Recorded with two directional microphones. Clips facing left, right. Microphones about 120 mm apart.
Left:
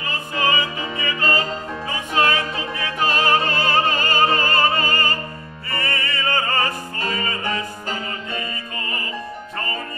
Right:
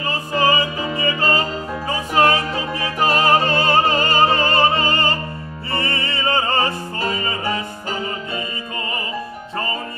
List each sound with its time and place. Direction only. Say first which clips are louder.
0.0 s music: right 4 dB; 30° right (ahead or behind)